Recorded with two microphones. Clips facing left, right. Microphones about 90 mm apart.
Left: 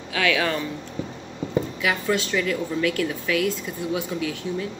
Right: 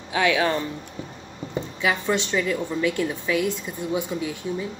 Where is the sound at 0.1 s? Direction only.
25° right (ahead or behind).